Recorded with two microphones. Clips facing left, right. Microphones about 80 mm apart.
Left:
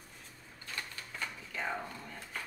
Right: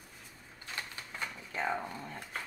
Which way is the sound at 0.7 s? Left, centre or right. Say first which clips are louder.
Right 1 dB; centre.